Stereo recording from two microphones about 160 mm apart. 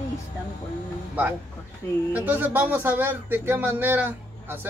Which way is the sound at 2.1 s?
10° right (ahead or behind).